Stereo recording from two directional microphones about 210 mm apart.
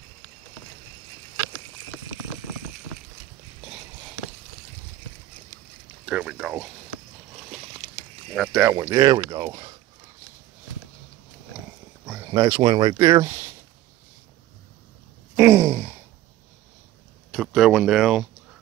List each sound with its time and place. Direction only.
6.0 s speech: 5° right (ahead or behind)
8.4 s speech: 5° right (ahead or behind)
8.7 s speech: 20° right (ahead or behind)
12.1 s speech: 15° right (ahead or behind)
15.3 s sigh: 10° right (ahead or behind)
17.3 s speech: centre (ahead or behind)